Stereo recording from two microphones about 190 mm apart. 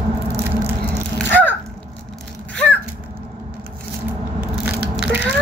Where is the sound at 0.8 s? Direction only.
10° left (ahead or behind).